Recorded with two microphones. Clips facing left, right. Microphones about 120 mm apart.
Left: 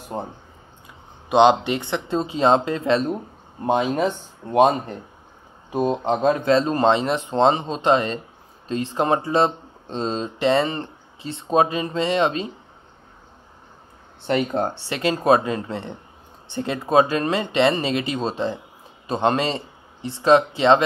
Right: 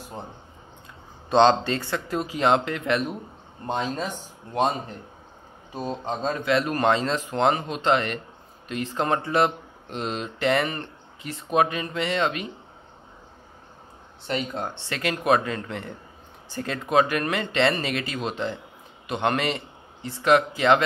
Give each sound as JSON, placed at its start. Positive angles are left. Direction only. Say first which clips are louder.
{"t": 0.0, "sound": "speech", "louder": "left 8 dB", "side_deg": 50}
{"t": 1.3, "sound": "speech", "louder": "left 3 dB", "side_deg": 15}
{"t": 4.4, "sound": "speech", "louder": "left 10 dB", "side_deg": 55}
{"t": 5.7, "sound": "speech", "louder": "left 9 dB", "side_deg": 15}
{"t": 14.3, "sound": "speech", "louder": "left 7 dB", "side_deg": 55}
{"t": 14.9, "sound": "a man's voice", "louder": "left 4 dB", "side_deg": 25}